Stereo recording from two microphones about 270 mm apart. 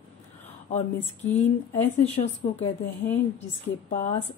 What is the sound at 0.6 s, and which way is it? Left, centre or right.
Speech, left.